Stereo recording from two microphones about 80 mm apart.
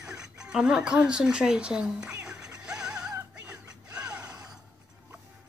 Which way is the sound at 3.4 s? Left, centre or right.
Centre.